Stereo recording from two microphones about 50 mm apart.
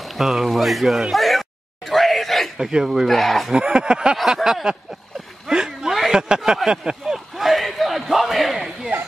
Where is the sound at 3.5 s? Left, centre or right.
Centre.